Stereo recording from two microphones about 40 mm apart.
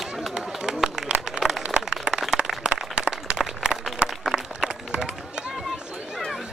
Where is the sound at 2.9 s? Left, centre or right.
Right.